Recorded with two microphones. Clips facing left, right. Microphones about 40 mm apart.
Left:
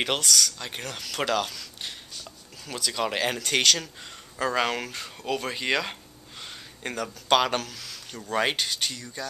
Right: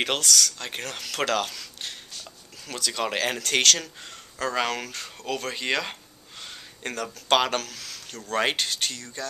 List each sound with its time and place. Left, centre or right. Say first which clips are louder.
0.0 s speech: right 1 dB; centre